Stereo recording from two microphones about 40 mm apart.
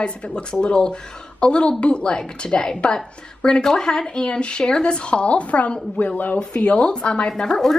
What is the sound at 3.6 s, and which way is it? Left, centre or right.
A woman's voice, centre.